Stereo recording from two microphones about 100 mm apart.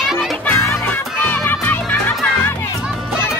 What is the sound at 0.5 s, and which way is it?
Music, 20° left (ahead or behind).